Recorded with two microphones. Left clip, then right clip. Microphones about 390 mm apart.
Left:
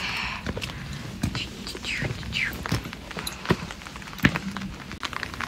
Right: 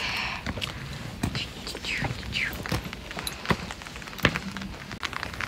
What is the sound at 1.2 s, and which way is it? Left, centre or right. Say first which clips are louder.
Whispering: even; centre.